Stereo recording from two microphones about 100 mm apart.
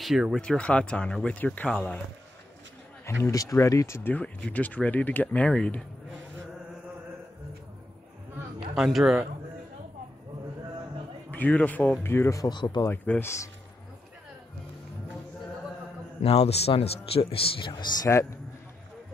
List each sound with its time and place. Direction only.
0.0 s speech: centre (ahead or behind)
0.4 s speech: 10° left (ahead or behind)
3.1 s speech: 30° left (ahead or behind)
4.1 s speech: 15° left (ahead or behind)
8.5 s speech: 5° right (ahead or behind)
11.2 s speech: 15° left (ahead or behind)
12.4 s speech: 45° left (ahead or behind)
13.2 s speech: 30° left (ahead or behind)
16.3 s speech: 90° left; by 17.8 s 55° left (ahead or behind)